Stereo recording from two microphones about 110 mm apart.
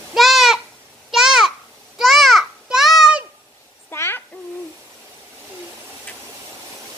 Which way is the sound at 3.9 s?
20° left (ahead or behind).